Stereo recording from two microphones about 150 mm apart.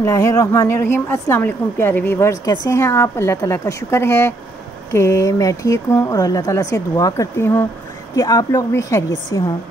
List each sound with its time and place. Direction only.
0.0 s a woman's voice: 20° left (ahead or behind)
2.4 s speech: 25° left (ahead or behind)